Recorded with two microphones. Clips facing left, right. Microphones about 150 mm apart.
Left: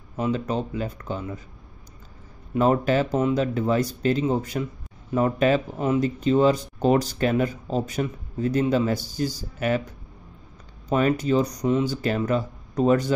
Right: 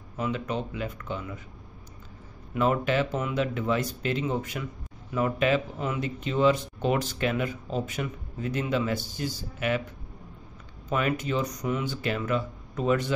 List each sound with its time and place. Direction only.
0.2 s speech: 35° left (ahead or behind)
2.5 s speech: 35° left (ahead or behind)
10.9 s speech: 35° left (ahead or behind)